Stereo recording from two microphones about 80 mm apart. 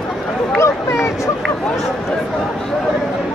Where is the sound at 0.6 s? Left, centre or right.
Left.